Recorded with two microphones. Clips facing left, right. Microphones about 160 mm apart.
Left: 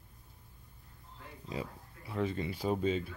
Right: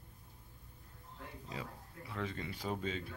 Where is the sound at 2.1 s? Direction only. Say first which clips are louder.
Left 7 dB; 15° left (ahead or behind).